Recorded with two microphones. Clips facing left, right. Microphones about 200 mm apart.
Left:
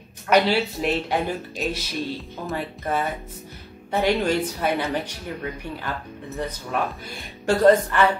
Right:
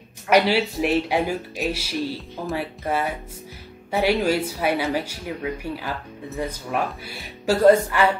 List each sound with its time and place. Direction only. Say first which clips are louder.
0.3 s speech: right 1 dB; 10° right (ahead or behind)